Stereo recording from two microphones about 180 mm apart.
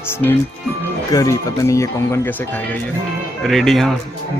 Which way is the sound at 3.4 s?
Centre (ahead or behind).